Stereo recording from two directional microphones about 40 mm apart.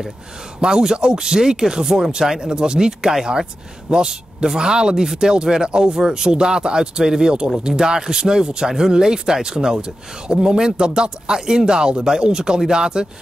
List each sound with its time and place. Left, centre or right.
0.6 s speech: centre